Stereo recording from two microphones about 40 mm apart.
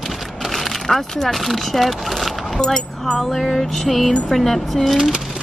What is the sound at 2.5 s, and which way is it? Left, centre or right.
Speech, centre.